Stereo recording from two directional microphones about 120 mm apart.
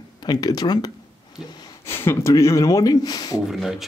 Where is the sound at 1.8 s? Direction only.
20° left (ahead or behind).